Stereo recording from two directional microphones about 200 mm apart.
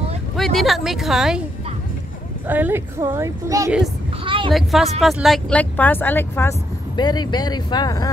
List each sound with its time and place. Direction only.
0.4 s speech: centre (ahead or behind)
2.4 s speech: 10° right (ahead or behind)
4.2 s a sound: 25° right (ahead or behind)
4.5 s speech: centre (ahead or behind)
7.0 s speech: 20° left (ahead or behind)